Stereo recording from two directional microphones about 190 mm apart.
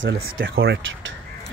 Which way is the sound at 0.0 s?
85° right.